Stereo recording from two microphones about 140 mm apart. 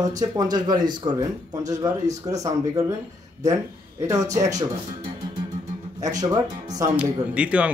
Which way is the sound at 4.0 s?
20° right (ahead or behind).